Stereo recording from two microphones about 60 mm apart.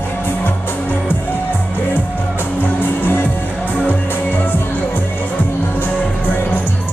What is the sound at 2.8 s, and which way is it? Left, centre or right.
Music, left.